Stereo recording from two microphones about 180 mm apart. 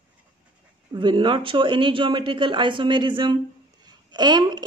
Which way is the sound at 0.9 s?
25° right (ahead or behind).